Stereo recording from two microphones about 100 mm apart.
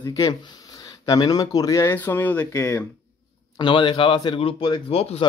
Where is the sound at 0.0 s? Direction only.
40° left (ahead or behind).